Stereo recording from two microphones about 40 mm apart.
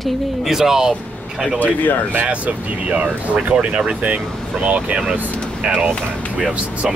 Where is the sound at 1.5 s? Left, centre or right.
Left.